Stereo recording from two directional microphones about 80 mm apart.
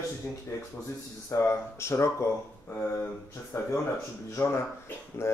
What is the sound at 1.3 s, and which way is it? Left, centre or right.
Speech, left.